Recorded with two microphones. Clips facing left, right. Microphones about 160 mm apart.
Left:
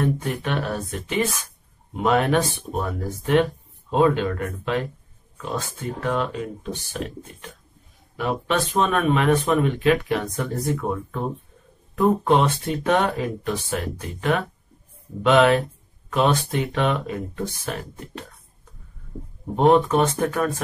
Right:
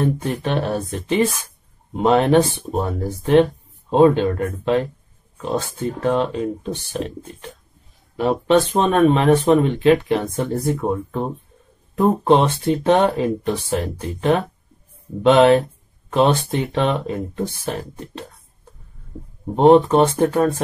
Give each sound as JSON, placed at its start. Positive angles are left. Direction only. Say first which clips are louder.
{"t": 0.0, "sound": "speech", "louder": "right 3 dB", "side_deg": -30}
{"t": 8.2, "sound": "speech", "louder": "right 7 dB", "side_deg": -30}
{"t": 19.5, "sound": "speech", "louder": "right 5 dB", "side_deg": -25}